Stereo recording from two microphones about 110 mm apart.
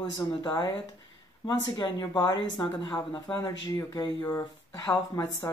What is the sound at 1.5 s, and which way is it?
Speech, 45° left (ahead or behind).